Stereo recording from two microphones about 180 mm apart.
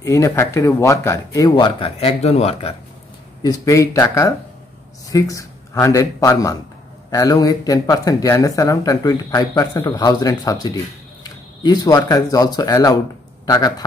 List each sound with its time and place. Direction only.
0.0 s speech: 15° left (ahead or behind)
1.8 s speech: 30° left (ahead or behind)
3.4 s speech: 15° left (ahead or behind)